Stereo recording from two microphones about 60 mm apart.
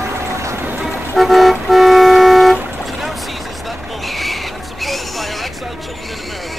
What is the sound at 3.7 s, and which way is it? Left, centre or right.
Owl, centre.